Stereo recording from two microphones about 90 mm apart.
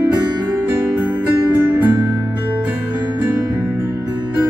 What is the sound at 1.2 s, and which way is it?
Music, 20° right (ahead or behind).